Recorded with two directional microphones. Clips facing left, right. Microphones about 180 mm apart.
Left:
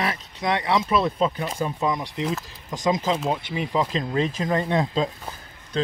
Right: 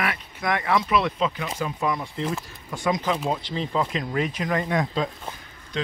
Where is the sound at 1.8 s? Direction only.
20° left (ahead or behind).